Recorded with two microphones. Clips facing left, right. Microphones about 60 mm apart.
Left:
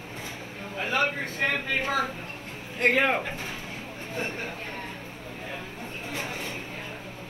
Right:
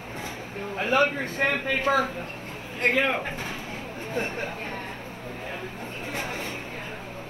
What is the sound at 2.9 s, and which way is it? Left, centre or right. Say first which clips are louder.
Speech: even; left.